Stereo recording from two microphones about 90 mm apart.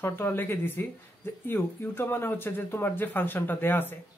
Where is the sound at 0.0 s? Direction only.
25° left (ahead or behind).